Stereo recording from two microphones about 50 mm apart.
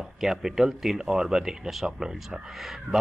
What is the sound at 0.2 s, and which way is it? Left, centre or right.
Speech, centre.